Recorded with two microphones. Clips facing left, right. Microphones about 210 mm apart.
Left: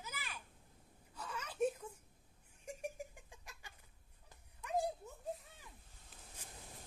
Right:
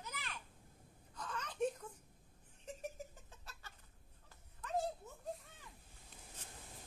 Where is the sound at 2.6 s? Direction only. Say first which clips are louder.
Left 2 dB; 15° left (ahead or behind).